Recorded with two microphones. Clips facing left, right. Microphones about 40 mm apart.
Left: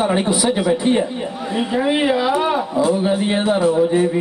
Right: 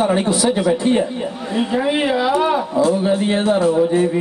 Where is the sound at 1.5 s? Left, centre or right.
Centre.